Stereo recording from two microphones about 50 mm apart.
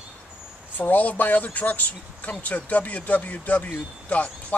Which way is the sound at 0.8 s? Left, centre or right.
Left.